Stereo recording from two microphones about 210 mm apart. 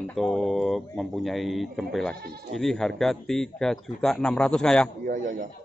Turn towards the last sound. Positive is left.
turn(degrees=-40)  # may be behind; listen again after turning